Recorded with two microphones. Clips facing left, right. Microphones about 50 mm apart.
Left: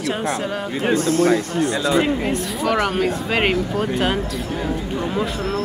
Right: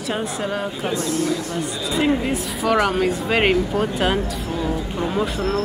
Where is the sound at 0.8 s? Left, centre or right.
Left.